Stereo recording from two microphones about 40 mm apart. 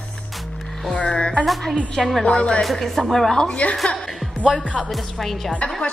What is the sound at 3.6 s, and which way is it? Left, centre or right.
Music, left.